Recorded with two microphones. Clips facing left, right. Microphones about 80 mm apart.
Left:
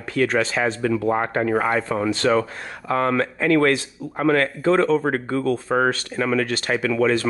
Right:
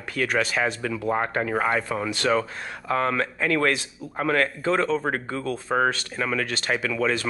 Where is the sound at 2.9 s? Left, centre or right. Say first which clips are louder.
Left 3 dB; left.